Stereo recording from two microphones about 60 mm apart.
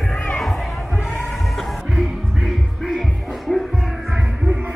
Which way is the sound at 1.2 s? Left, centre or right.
Centre.